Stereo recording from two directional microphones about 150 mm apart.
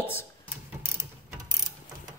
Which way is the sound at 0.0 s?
15° left (ahead or behind).